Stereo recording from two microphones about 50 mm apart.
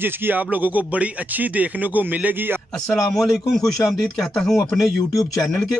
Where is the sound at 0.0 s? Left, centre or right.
Right.